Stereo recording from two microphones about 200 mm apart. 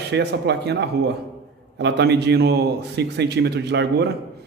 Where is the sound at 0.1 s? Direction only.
55° right (ahead or behind).